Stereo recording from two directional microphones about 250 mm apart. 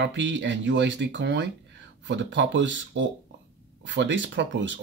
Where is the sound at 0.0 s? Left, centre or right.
Right.